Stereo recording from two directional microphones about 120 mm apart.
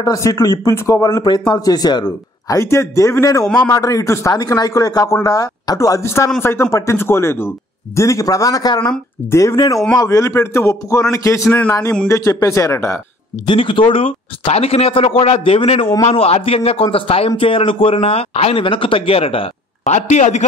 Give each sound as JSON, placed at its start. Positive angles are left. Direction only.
{"t": 0.0, "sound": "speech", "side_deg": 30}
{"t": 13.5, "sound": "a man's voice", "side_deg": 45}
{"t": 17.9, "sound": "speech", "side_deg": 60}
{"t": 20.0, "sound": "a man's voice", "side_deg": 80}